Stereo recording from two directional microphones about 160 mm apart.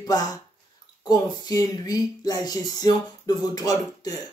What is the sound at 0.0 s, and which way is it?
Speech, 25° left (ahead or behind).